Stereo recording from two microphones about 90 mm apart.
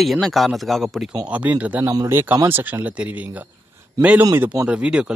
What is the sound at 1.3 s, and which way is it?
Speech, 15° right (ahead or behind).